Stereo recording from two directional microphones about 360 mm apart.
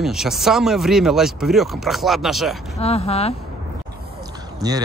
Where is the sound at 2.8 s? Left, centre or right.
Centre.